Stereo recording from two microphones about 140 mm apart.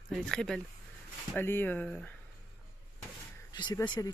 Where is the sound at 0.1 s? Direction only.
5° left (ahead or behind).